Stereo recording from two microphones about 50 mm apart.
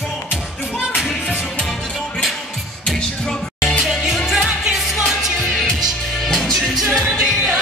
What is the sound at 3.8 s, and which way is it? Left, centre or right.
Music, centre.